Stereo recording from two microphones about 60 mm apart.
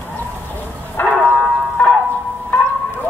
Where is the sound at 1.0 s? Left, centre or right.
Left.